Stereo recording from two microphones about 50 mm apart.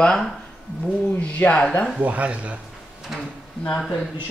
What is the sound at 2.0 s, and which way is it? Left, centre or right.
Speech, right.